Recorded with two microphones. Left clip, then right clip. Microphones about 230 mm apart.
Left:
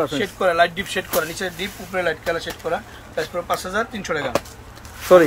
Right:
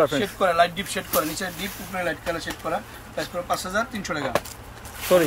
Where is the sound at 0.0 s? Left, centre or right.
Centre.